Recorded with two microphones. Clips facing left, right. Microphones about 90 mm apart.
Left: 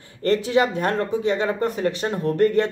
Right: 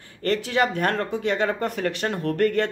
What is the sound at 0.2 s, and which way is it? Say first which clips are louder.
Speech: left 3 dB; 30° left (ahead or behind).